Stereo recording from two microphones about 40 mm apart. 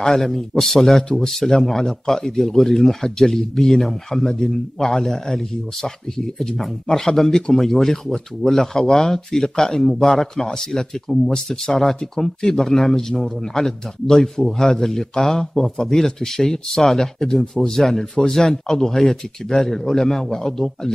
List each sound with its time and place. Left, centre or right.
0.2 s a man's voice: centre